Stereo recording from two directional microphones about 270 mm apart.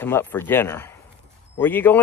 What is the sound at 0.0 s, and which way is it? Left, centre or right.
Speech, centre.